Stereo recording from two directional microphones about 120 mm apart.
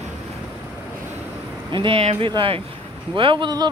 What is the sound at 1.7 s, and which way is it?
Speech, 45° right (ahead or behind).